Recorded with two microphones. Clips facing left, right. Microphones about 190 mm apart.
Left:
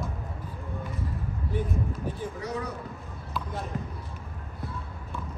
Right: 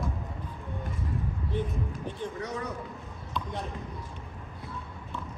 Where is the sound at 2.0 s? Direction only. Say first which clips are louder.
Left 1 dB; 5° left (ahead or behind).